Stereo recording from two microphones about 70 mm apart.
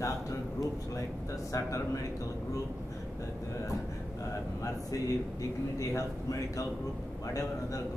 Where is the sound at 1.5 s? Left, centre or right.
Left.